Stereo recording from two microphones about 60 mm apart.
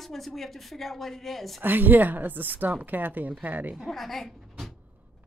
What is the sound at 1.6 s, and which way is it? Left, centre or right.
A woman's voice, right.